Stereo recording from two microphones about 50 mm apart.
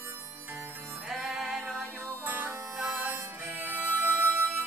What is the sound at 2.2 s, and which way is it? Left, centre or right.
Music, right.